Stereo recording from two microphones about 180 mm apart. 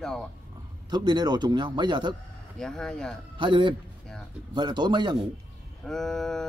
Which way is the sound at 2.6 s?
5° left (ahead or behind).